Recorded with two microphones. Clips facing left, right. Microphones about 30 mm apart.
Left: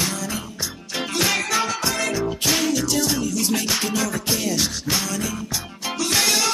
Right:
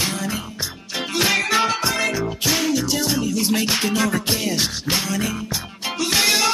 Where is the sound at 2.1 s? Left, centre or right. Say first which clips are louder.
Even; centre.